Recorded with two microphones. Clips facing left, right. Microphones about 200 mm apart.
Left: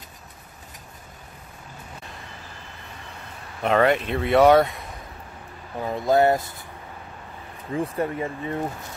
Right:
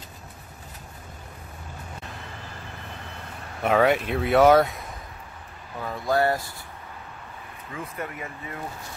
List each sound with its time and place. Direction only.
3.6 s speech: 5° right (ahead or behind)
5.8 s speech: 20° left (ahead or behind)
7.7 s speech: 30° left (ahead or behind)